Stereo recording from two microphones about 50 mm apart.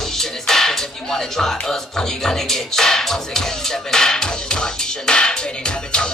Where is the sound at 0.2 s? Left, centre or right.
Centre.